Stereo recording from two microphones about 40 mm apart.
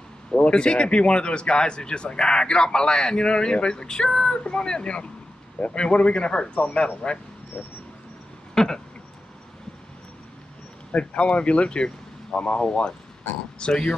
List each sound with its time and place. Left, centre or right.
0.3 s speech: left
8.5 s a sound: centre
10.9 s speech: left